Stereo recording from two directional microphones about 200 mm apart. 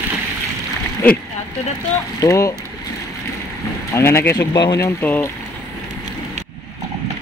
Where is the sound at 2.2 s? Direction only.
15° left (ahead or behind).